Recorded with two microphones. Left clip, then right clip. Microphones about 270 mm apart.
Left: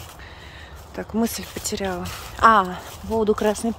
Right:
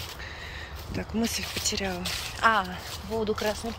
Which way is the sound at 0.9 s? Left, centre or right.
Left.